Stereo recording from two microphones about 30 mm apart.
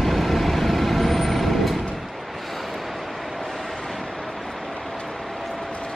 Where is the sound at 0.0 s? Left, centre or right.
Centre.